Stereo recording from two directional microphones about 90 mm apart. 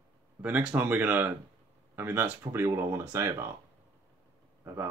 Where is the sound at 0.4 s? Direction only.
15° right (ahead or behind); by 3.5 s 30° right (ahead or behind).